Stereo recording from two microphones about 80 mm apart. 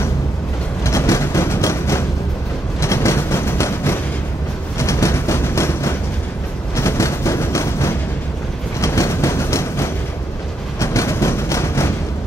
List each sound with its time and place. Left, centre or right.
0.8 s train: left
2.8 s vehicle: left
4.7 s train: left
10.8 s a sound: left